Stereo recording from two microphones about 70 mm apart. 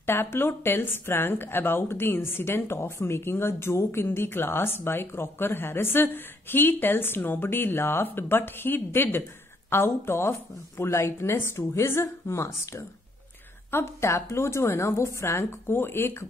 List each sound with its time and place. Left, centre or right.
0.0 s speech: left